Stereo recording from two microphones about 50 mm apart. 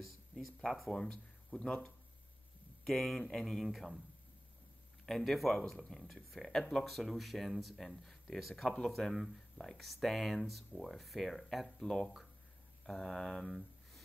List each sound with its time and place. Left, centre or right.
0.9 s speech: centre
5.0 s speech: centre
8.6 s speech: centre
8.9 s speech: centre